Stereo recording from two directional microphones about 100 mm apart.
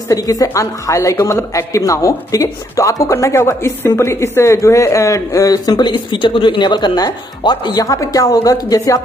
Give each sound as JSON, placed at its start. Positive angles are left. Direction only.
{"t": 0.1, "sound": "a woman's voice", "side_deg": 35}